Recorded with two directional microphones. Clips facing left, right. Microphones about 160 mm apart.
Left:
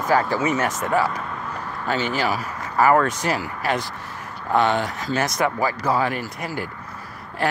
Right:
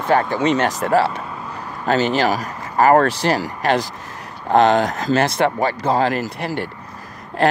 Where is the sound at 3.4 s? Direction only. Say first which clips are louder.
Right 5 dB; 80° right.